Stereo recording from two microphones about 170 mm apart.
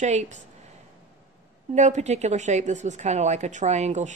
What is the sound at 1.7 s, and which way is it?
Speech, 45° right (ahead or behind).